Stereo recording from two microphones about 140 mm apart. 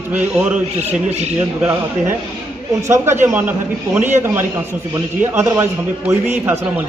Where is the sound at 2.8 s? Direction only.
20° right (ahead or behind).